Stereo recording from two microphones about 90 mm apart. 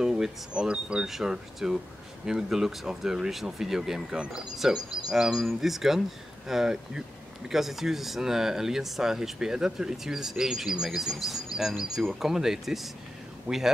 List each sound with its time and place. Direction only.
0.0 s speech: 10° right (ahead or behind)
13.5 s speech: 15° right (ahead or behind)